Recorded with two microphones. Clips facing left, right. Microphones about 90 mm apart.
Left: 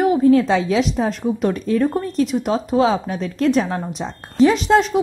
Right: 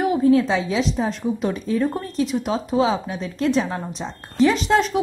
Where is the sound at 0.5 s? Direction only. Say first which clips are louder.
Left 4 dB; 60° left (ahead or behind).